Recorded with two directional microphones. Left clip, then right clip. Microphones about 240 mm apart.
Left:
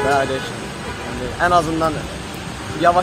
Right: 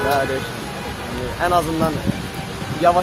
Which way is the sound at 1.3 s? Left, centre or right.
Centre.